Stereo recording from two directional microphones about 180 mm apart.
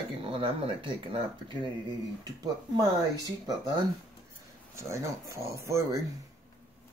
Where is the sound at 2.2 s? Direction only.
20° right (ahead or behind).